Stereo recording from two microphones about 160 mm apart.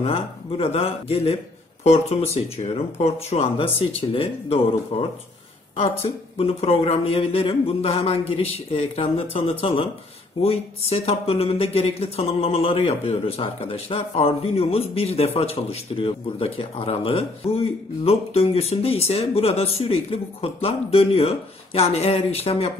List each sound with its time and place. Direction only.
0.0 s speech: 40° left (ahead or behind)